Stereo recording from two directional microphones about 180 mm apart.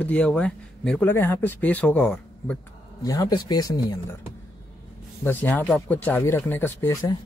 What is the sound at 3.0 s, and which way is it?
Speech, 20° left (ahead or behind).